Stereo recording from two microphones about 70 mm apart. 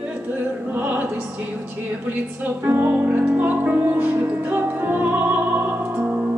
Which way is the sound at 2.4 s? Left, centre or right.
Right.